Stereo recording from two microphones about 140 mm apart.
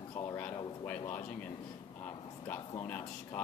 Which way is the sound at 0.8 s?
10° left (ahead or behind).